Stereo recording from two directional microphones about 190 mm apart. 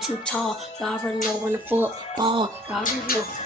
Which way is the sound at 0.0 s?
5° left (ahead or behind).